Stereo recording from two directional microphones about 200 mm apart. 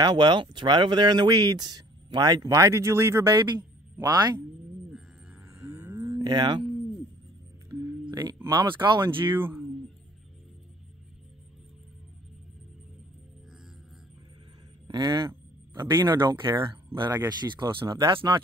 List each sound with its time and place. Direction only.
0.0 s speech: 20° right (ahead or behind)
5.5 s a sound: 15° right (ahead or behind)
8.0 s speech: 20° right (ahead or behind)
9.2 s speech: 10° right (ahead or behind)
14.9 s speech: 20° right (ahead or behind)